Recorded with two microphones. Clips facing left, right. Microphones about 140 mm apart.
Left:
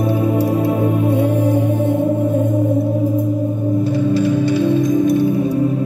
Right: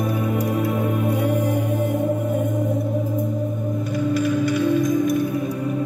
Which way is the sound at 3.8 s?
30° left (ahead or behind).